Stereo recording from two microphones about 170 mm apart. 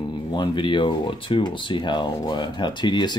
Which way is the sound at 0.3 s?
25° left (ahead or behind).